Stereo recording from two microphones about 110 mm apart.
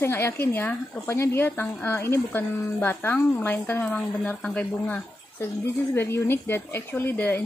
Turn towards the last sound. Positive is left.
turn(degrees=15)  # may be behind; listen again after turning